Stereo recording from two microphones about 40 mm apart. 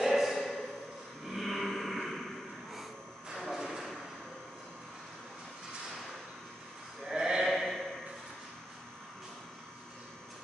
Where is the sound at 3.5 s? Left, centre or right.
Centre.